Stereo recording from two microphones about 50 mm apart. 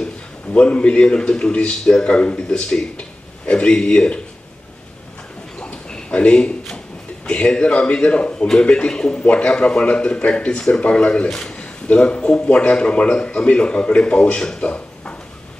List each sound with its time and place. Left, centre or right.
0.0 s a man's voice: left
5.6 s a sound: centre
7.2 s a man's voice: centre
11.6 s a man's voice: left